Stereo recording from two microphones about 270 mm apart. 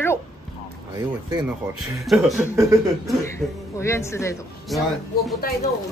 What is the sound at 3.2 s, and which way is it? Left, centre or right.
A woman's voice, centre.